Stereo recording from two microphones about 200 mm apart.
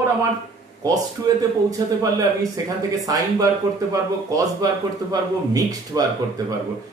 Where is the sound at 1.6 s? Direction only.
15° right (ahead or behind).